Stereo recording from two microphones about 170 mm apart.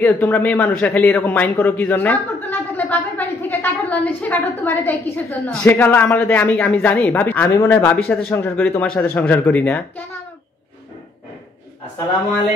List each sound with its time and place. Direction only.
0.0 s speech: 10° left (ahead or behind)